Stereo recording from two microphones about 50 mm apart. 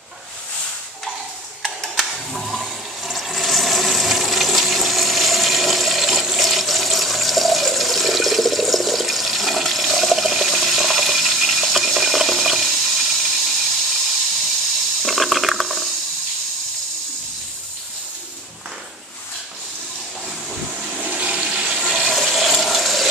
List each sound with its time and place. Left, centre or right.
2.0 s toilet flush: centre
15.0 s a sound: centre
20.2 s steam: centre
21.0 s toilet flush: right
21.9 s toilet flush: centre